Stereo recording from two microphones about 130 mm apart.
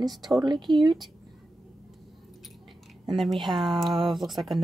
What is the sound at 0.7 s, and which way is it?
Speech, 35° right (ahead or behind).